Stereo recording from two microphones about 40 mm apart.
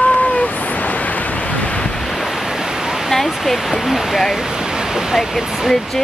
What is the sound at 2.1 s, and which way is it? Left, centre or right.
Waves, centre.